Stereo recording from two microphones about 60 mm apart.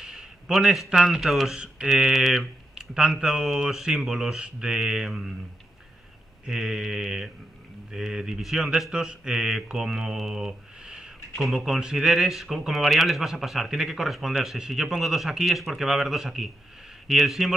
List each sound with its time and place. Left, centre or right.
0.0 s a man's voice: centre
2.7 s a sound: centre
3.2 s speech: centre
6.4 s speech: centre